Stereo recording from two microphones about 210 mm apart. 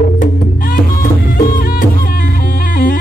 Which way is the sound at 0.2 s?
45° left (ahead or behind).